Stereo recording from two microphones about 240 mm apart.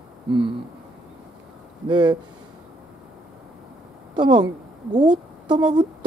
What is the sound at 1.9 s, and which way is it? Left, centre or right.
Speech, centre.